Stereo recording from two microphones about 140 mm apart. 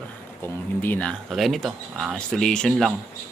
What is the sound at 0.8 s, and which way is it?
Speech, 10° left (ahead or behind).